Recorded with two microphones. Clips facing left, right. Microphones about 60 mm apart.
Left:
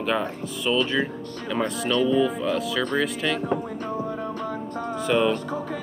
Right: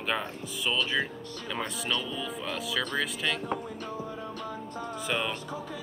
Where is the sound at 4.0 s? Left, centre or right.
Left.